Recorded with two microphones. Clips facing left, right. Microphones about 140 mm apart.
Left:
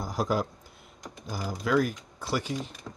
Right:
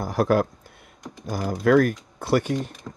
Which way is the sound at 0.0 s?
60° right (ahead or behind).